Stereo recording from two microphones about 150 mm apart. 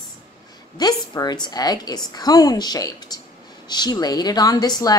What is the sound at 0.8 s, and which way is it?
A woman's voice, 25° left (ahead or behind).